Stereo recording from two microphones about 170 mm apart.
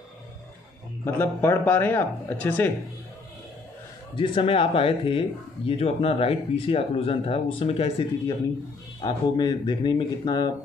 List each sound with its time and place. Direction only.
1.0 s speech: 15° left (ahead or behind)
4.1 s speech: 30° left (ahead or behind)
9.0 s speech: 25° left (ahead or behind)